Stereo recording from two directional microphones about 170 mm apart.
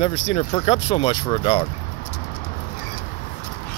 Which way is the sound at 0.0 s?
40° left (ahead or behind).